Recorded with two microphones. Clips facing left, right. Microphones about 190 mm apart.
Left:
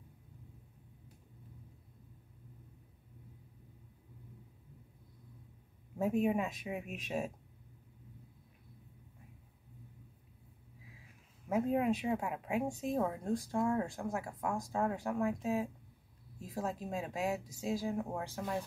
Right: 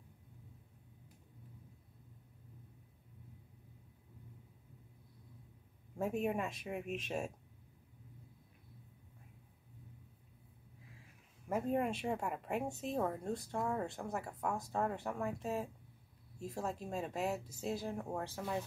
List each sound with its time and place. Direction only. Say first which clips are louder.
5.9 s a woman's voice: left 4 dB; 5° left (ahead or behind)
11.4 s a woman's voice: left 4 dB; centre (ahead or behind)